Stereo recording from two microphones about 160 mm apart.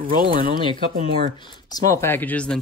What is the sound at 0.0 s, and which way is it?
Speech, 65° right (ahead or behind).